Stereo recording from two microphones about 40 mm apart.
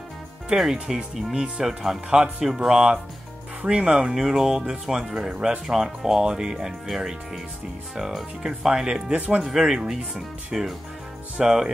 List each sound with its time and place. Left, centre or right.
0.5 s speech: right
0.8 s speech: centre
3.6 s speech: right
6.9 s speech: centre; by 9.8 s right
9.8 s speech: centre